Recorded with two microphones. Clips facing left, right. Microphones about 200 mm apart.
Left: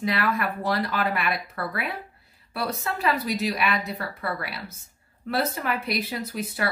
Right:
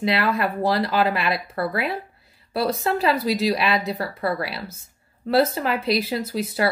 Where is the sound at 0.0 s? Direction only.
30° right (ahead or behind).